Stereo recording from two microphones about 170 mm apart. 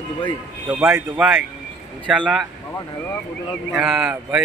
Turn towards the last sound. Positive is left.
turn(degrees=-10)  # may be behind; listen again after turning